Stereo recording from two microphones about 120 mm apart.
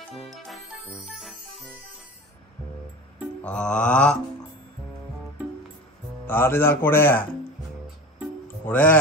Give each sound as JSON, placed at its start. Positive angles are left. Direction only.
{"t": 0.1, "sound": "music", "side_deg": 0}
{"t": 3.4, "sound": "speech", "side_deg": 10}
{"t": 6.2, "sound": "speech", "side_deg": 20}
{"t": 8.6, "sound": "speech", "side_deg": 10}